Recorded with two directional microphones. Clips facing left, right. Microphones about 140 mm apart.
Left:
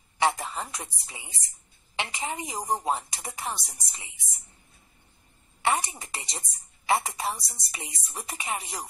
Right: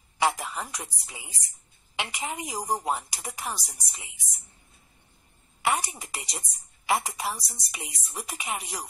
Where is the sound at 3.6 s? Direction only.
Centre (ahead or behind).